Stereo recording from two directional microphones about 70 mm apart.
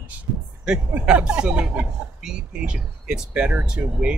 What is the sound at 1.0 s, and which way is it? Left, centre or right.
Speech, centre.